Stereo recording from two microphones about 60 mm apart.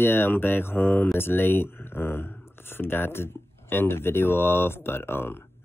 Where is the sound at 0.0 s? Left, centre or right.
Left.